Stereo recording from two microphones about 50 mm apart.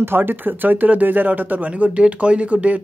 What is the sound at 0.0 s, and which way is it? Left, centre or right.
Speech, right.